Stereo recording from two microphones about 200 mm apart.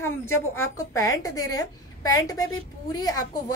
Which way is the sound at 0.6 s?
15° left (ahead or behind).